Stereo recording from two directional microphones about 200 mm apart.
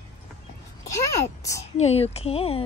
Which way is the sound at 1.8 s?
30° left (ahead or behind).